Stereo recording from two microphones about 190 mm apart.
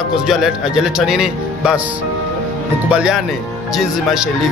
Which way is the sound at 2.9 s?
5° right (ahead or behind).